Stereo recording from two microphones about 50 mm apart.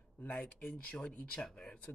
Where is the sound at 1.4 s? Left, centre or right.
Centre.